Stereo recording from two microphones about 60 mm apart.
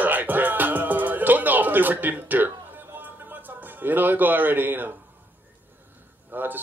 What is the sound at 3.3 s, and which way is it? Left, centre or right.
A man's voice, right.